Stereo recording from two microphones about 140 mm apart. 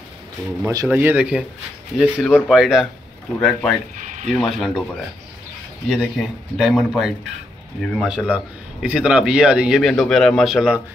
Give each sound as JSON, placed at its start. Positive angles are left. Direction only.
{"t": 0.8, "sound": "speech", "side_deg": -10}
{"t": 4.0, "sound": "a sound", "side_deg": -60}
{"t": 4.3, "sound": "speech", "side_deg": 0}
{"t": 5.9, "sound": "speech", "side_deg": 0}
{"t": 8.1, "sound": "speech", "side_deg": -5}